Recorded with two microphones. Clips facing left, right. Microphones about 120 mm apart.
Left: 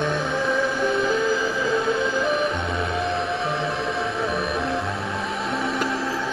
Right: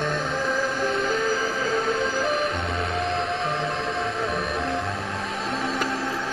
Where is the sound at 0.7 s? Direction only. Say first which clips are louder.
Left 3 dB; 30° right (ahead or behind).